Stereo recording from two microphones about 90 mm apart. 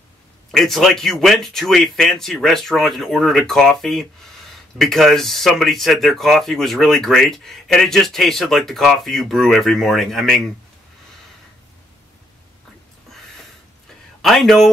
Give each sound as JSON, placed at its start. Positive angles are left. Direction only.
{"t": 0.5, "sound": "speech", "side_deg": 0}
{"t": 14.2, "sound": "speech", "side_deg": 0}